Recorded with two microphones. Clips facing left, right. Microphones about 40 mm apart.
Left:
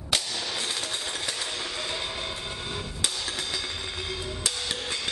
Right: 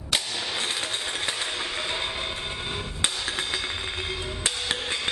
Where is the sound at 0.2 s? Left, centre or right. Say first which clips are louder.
Right 2 dB; right.